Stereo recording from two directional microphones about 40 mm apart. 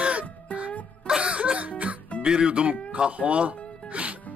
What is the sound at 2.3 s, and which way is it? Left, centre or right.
Speech, right.